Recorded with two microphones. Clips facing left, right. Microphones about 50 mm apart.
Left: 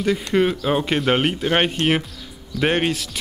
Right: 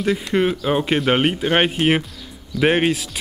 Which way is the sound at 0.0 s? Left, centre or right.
Centre.